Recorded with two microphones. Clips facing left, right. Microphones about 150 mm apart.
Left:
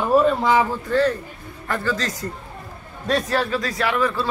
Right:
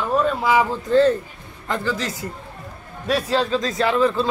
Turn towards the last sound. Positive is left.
turn(degrees=-25)  # may be behind; listen again after turning